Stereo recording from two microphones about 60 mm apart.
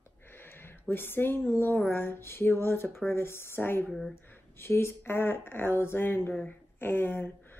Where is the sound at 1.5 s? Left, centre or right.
Left.